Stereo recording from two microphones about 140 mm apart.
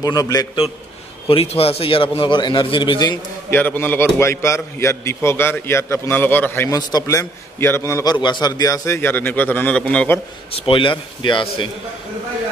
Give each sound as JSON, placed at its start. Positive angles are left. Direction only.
{"t": 0.0, "sound": "a man's voice", "side_deg": 25}
{"t": 1.2, "sound": "a man's voice", "side_deg": 45}
{"t": 3.4, "sound": "a man's voice", "side_deg": 15}
{"t": 10.7, "sound": "a man's voice", "side_deg": 35}